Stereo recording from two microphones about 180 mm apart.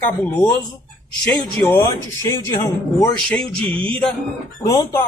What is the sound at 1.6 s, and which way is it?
A man's voice, 10° left (ahead or behind).